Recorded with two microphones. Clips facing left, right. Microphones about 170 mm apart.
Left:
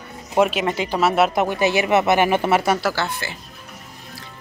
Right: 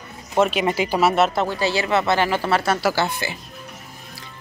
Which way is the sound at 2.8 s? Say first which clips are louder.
Right 2 dB; 10° right (ahead or behind).